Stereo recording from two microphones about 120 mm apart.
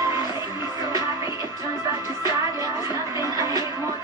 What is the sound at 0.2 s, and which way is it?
Music, 40° left (ahead or behind).